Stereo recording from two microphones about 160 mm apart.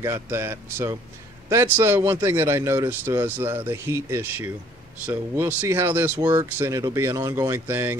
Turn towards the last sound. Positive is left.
turn(degrees=-15)  # may be behind; listen again after turning